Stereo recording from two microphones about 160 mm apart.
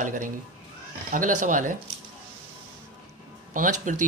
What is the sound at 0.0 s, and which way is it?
Speech, 55° right (ahead or behind).